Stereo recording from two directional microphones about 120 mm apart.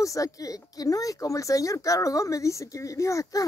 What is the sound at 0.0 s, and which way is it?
A woman's voice, 30° left (ahead or behind).